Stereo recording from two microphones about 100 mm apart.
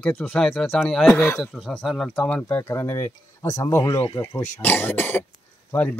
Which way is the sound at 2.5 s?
25° left (ahead or behind).